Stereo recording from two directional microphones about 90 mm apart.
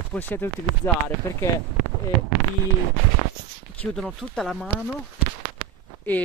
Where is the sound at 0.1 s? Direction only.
20° left (ahead or behind).